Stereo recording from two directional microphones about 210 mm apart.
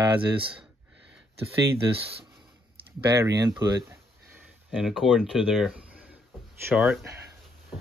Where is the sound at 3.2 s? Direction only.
15° right (ahead or behind).